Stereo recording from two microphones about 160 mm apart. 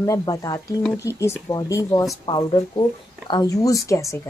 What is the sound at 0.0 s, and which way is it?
Speech, 20° left (ahead or behind).